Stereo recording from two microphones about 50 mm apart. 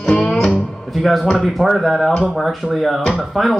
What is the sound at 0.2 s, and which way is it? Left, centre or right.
Music, centre.